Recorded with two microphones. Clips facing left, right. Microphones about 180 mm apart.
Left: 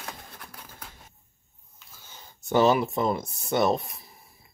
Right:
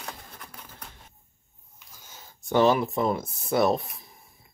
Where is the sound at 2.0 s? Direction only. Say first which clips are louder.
Left 1 dB; 5° right (ahead or behind).